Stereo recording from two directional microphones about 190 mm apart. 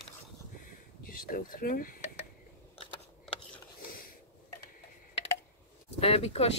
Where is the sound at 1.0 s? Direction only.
50° left (ahead or behind).